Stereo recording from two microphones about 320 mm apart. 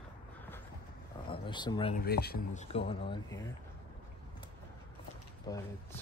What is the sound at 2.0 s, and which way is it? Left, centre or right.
Speech, left.